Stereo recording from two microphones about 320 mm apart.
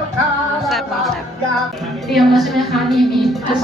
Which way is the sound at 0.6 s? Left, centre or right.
Centre.